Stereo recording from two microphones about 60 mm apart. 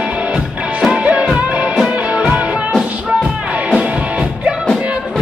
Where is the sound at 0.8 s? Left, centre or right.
Centre.